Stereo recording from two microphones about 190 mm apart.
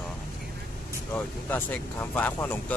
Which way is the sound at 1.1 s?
10° left (ahead or behind).